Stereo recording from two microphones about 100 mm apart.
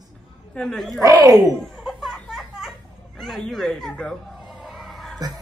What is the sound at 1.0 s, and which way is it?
Speech, 40° right (ahead or behind).